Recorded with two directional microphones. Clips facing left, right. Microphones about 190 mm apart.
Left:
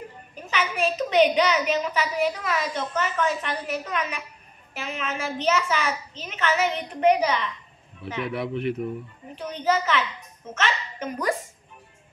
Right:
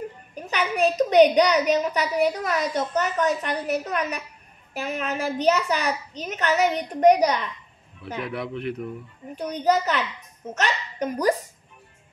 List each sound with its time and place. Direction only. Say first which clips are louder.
0.5 s a woman's voice: right 3 dB; 40° right (ahead or behind)
8.2 s speech: left 2 dB; centre (ahead or behind)
9.3 s a woman's voice: right 3 dB; 40° right (ahead or behind)